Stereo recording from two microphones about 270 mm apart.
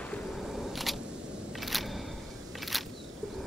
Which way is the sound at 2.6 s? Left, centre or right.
Centre.